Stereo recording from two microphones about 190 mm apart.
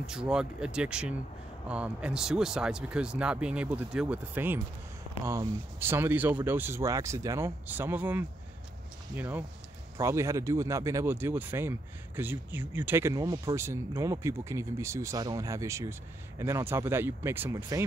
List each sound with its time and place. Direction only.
0.0 s speech: 5° right (ahead or behind)